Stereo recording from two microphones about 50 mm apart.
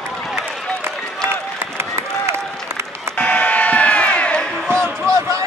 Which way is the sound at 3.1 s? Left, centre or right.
Left.